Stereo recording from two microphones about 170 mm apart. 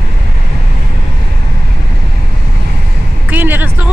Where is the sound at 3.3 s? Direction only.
10° right (ahead or behind).